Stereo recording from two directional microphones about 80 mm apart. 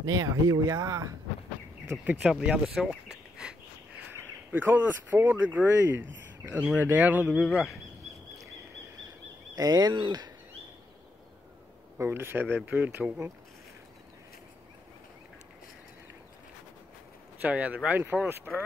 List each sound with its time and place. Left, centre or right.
0.1 s speech: right
2.2 s speech: centre
2.9 s bird: centre
4.1 s speech: right
7.2 s speech: centre
9.6 s speech: right
9.9 s speech: right
12.0 s speech: right
17.4 s speech: centre
18.1 s speech: centre